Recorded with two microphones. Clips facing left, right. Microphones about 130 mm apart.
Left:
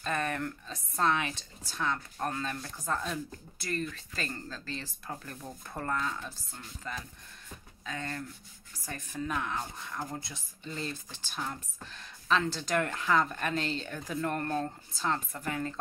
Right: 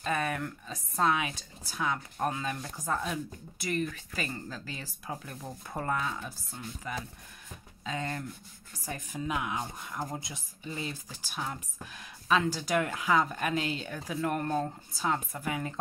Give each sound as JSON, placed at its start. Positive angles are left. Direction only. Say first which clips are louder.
{"t": 0.0, "sound": "speech", "louder": "right 1 dB", "side_deg": -5}